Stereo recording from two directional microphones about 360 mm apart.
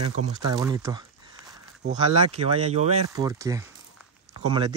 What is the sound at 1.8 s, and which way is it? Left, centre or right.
Speech, centre.